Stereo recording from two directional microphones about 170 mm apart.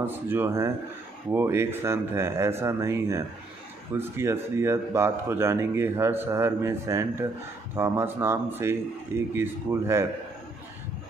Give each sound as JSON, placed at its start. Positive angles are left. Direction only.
{"t": 0.0, "sound": "speech", "side_deg": -10}